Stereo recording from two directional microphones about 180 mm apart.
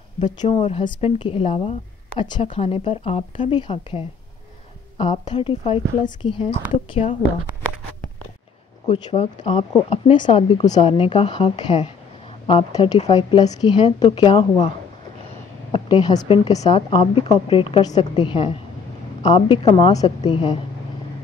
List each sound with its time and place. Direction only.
0.2 s speech: 25° left (ahead or behind)
4.9 s speech: 30° left (ahead or behind)
8.8 s speech: 30° left (ahead or behind)
15.7 s speech: 25° left (ahead or behind)